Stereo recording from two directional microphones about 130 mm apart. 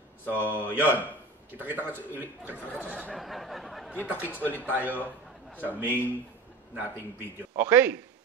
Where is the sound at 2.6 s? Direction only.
15° left (ahead or behind).